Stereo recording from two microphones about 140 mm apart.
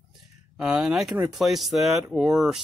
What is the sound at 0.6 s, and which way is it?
Speech, 5° right (ahead or behind).